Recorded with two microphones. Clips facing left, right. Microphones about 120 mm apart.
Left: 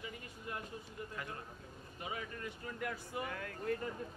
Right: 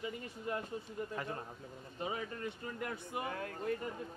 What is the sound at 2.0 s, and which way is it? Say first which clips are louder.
Speech: right 4 dB; 30° right (ahead or behind).